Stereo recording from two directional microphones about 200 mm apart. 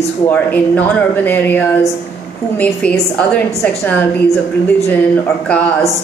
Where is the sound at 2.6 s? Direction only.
5° left (ahead or behind).